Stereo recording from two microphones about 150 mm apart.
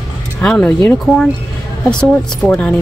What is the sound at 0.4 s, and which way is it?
Speech, 5° left (ahead or behind).